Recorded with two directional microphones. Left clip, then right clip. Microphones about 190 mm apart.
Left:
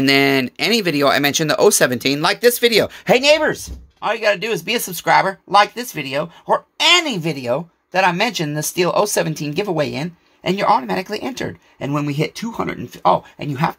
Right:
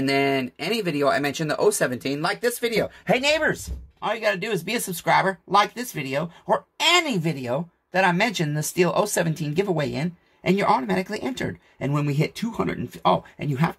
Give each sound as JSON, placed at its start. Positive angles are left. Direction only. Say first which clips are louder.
{"t": 0.0, "sound": "speech", "louder": "left 7 dB", "side_deg": 40}
{"t": 3.2, "sound": "speech", "louder": "left 8 dB", "side_deg": 20}